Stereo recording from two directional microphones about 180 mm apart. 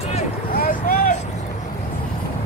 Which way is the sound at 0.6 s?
55° left (ahead or behind).